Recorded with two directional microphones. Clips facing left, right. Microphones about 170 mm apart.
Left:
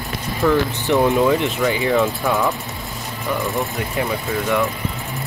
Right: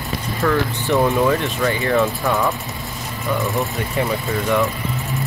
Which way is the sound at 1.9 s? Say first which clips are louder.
Even; centre (ahead or behind).